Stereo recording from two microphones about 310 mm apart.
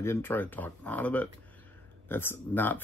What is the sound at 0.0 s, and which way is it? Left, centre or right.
Speech, centre.